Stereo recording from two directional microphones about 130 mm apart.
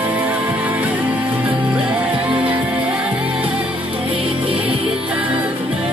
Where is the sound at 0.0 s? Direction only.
10° right (ahead or behind).